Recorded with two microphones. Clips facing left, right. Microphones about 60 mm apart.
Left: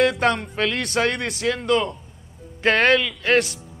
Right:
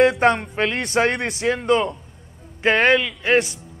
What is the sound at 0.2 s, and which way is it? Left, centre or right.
A man's voice, right.